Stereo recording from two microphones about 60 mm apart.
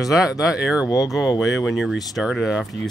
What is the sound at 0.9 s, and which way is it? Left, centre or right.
Speech, left.